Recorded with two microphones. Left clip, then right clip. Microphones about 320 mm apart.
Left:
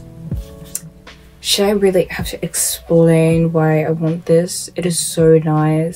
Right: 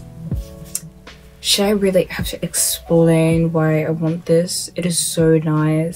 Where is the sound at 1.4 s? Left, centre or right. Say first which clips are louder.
Left 2 dB; centre.